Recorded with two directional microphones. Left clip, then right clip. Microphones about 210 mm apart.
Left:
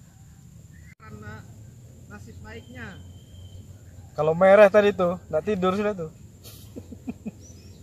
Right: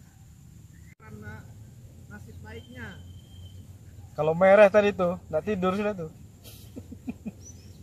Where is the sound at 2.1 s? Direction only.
40° left (ahead or behind).